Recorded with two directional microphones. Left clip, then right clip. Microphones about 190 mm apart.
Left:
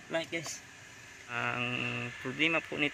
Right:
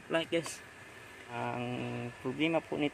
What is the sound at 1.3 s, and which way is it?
Mantra, 15° right (ahead or behind).